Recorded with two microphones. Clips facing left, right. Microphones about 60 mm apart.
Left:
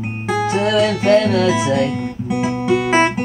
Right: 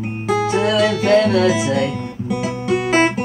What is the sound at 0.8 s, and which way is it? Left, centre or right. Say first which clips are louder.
Music: left 1 dB; centre.